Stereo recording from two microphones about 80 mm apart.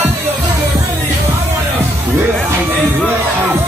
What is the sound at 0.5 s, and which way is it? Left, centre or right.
Music, right.